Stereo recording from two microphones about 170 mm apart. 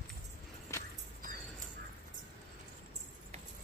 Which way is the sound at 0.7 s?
20° left (ahead or behind).